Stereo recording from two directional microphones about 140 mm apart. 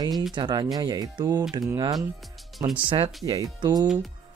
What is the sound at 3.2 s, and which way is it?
Speech, 25° right (ahead or behind).